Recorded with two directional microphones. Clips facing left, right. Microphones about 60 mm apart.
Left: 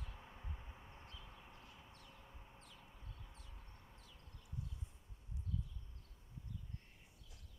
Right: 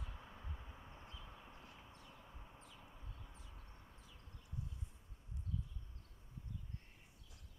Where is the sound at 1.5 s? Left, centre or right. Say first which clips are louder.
Right 1 dB; centre.